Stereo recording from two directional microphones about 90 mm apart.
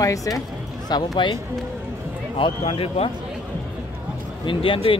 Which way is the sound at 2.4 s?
90° left.